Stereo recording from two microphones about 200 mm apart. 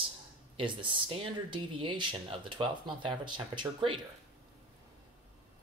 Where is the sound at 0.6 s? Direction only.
25° right (ahead or behind).